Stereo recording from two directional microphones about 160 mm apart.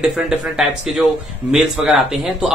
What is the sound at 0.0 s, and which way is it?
Speech, centre (ahead or behind).